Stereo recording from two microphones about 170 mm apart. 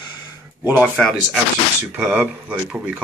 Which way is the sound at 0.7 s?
5° left (ahead or behind).